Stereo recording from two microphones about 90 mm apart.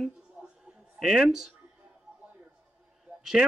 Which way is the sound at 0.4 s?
5° right (ahead or behind).